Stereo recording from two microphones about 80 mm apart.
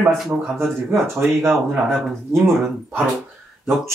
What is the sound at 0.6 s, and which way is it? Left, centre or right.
Speech, right.